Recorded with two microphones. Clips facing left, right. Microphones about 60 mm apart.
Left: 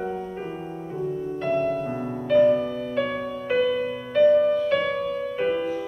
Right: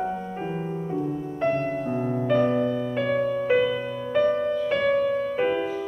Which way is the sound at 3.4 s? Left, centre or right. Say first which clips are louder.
Right 1 dB; centre.